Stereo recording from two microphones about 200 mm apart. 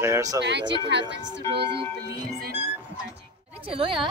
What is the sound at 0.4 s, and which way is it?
Speech, 60° right (ahead or behind).